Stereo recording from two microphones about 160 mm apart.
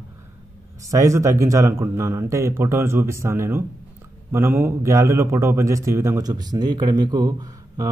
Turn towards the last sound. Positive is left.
turn(degrees=-25)  # may be behind; listen again after turning